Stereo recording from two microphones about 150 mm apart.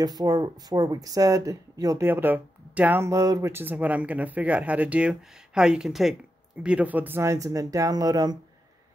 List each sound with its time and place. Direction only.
0.0 s speech: 25° right (ahead or behind)